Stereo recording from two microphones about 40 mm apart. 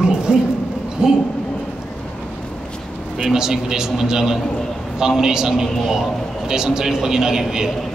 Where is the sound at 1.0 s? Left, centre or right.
Centre.